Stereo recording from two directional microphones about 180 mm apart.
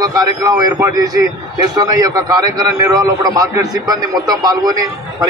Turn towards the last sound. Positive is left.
turn(degrees=-20)  # may be behind; listen again after turning